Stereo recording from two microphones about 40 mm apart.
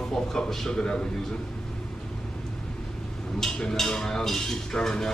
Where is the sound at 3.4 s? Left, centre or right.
Centre.